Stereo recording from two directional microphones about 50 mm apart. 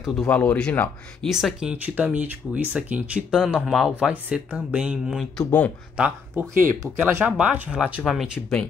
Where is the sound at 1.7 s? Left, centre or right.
Right.